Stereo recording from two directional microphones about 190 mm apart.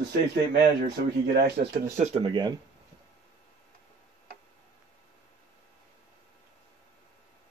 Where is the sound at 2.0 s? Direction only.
30° right (ahead or behind).